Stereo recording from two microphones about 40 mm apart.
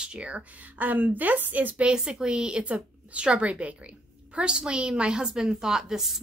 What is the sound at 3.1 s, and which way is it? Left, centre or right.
A woman's voice, right.